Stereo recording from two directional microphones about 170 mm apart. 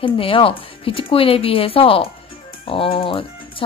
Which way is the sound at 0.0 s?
30° left (ahead or behind).